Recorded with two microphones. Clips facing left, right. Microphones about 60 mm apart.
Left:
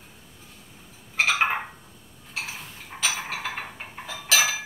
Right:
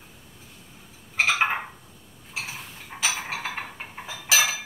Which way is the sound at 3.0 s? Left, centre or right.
Centre.